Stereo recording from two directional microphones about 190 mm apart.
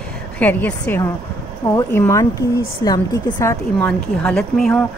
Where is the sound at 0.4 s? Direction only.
10° left (ahead or behind).